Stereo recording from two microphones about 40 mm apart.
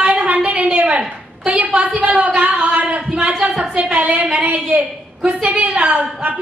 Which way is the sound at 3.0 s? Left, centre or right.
Right.